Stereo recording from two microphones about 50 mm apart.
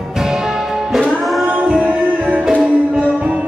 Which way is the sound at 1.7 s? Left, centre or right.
Right.